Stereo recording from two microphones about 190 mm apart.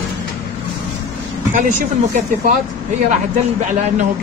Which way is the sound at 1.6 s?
40° right (ahead or behind).